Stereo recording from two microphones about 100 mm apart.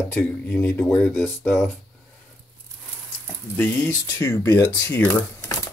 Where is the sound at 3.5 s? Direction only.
20° left (ahead or behind).